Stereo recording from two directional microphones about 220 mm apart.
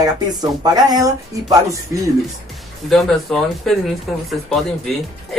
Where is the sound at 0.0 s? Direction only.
20° right (ahead or behind).